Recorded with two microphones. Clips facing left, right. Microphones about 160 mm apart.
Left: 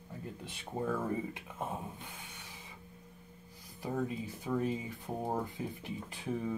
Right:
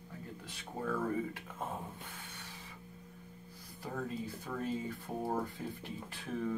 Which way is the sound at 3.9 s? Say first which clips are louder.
Left 3 dB; 15° left (ahead or behind).